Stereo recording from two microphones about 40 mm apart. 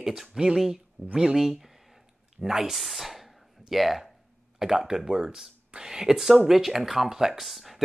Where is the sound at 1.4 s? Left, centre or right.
Centre.